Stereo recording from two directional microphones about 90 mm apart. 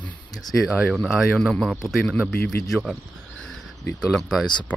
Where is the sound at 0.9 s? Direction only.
Centre (ahead or behind).